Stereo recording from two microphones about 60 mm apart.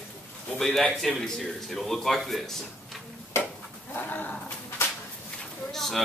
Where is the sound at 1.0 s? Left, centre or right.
Centre.